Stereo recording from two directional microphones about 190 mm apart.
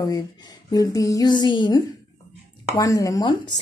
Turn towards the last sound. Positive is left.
turn(degrees=20)  # may be behind; listen again after turning